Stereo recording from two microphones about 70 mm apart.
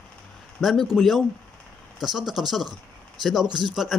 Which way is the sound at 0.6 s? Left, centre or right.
Centre.